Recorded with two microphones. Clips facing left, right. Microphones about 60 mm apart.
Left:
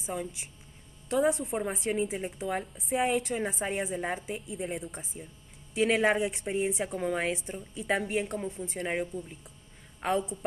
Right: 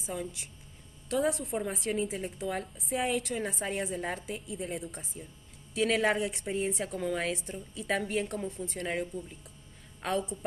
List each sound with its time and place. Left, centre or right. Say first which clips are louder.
0.0 s a woman's voice: left 2 dB; centre
6.5 s a woman's voice: left 2 dB; centre
7.2 s a woman's voice: left 2 dB; centre
8.3 s a woman's voice: left 1 dB; centre